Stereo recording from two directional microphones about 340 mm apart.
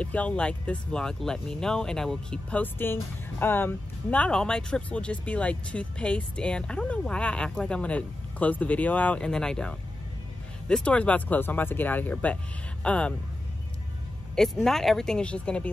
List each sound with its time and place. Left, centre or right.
0.0 s speech: centre
14.3 s speech: centre